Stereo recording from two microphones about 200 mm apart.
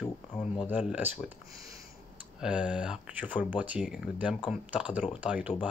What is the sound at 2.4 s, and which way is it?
Speech, 5° right (ahead or behind).